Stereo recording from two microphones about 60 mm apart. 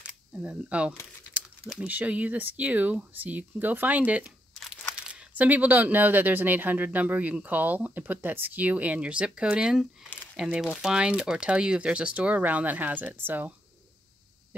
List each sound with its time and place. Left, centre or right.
0.3 s speech: right
4.9 s a sound: centre
5.3 s speech: right